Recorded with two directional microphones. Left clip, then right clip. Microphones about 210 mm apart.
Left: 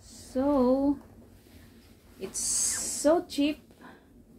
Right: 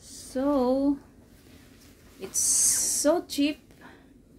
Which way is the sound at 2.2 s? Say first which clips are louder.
Right 5 dB; 10° right (ahead or behind).